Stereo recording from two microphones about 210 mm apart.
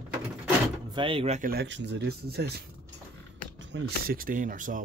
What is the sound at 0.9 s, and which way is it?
Speech, 25° right (ahead or behind).